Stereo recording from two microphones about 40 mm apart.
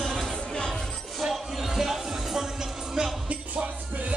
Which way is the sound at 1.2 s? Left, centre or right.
Centre.